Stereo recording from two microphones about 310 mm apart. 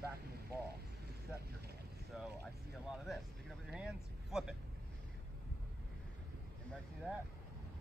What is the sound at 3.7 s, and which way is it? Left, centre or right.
Vehicle, centre.